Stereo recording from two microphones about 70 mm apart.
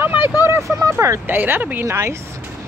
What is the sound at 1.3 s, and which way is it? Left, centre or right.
Speech, right.